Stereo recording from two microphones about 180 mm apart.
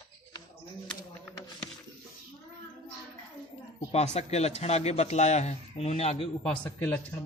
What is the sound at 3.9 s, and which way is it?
A man's voice, 35° left (ahead or behind).